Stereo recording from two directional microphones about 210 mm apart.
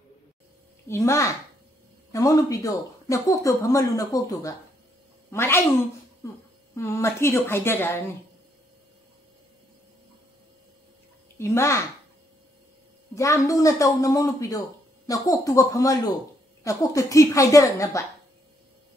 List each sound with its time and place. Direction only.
0.8 s speech: 15° left (ahead or behind)
6.7 s speech: 15° left (ahead or behind)
11.3 s speech: 15° left (ahead or behind)
13.1 s speech: 15° left (ahead or behind)